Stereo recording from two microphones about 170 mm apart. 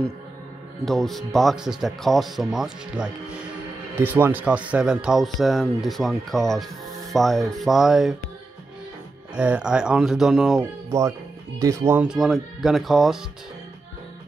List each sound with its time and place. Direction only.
0.8 s speech: centre (ahead or behind)
9.3 s speech: 5° right (ahead or behind)
10.9 s speech: 20° right (ahead or behind); by 13.2 s centre (ahead or behind)